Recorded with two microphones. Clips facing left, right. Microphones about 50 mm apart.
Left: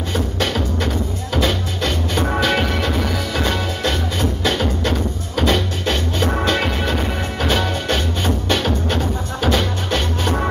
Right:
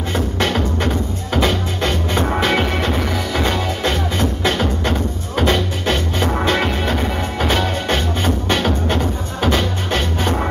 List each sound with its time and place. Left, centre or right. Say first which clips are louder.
0.1 s music: right 2 dB; right